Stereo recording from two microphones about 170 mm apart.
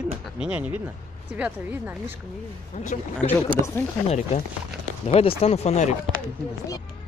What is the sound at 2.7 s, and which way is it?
Speech, 45° left (ahead or behind).